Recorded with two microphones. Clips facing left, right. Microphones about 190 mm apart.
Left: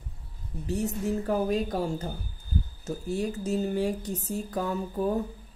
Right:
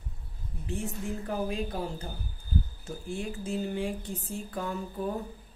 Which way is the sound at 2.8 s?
40° left (ahead or behind).